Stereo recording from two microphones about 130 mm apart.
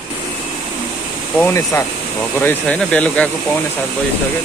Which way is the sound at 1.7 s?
25° left (ahead or behind).